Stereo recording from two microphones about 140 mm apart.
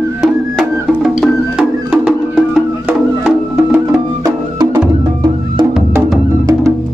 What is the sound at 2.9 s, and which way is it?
Music, 15° right (ahead or behind).